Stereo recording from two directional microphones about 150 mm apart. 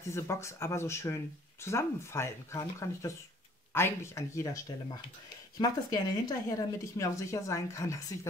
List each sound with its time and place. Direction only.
0.1 s speech: 20° left (ahead or behind)
4.7 s speech: 30° left (ahead or behind)